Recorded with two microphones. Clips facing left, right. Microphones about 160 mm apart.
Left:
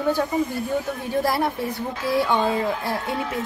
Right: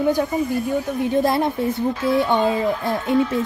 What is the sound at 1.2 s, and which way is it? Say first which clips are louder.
A woman's voice: right 4 dB; 20° right (ahead or behind).